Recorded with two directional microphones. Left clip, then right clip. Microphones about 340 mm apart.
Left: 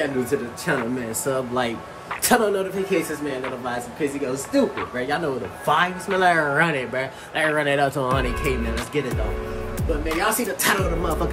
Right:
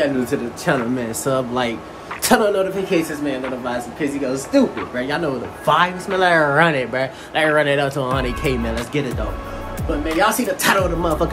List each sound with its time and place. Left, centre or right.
0.3 s speech: centre
10.0 s speech: centre